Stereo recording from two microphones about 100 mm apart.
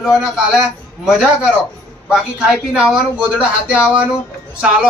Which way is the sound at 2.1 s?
10° right (ahead or behind).